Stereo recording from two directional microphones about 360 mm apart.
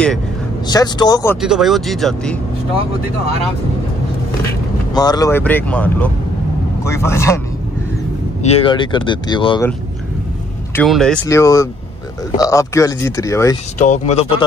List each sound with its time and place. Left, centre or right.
0.7 s speech: centre
4.9 s speech: centre
8.4 s speech: centre
10.8 s speech: centre
13.7 s speech: centre